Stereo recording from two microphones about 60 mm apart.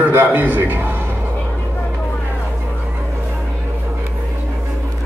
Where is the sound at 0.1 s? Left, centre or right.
Right.